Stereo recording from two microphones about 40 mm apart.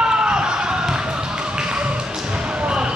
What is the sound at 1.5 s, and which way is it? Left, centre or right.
Music, right.